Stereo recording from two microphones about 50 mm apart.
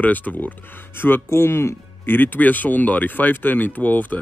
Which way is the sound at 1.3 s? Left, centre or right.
Left.